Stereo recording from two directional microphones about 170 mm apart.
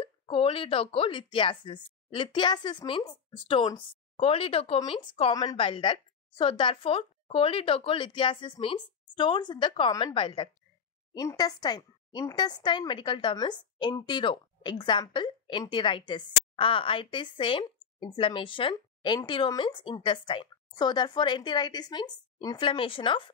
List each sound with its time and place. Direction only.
0.0 s speech: 30° left (ahead or behind)